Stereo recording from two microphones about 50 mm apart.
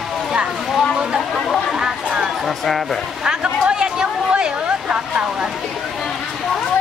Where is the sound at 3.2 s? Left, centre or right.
Centre.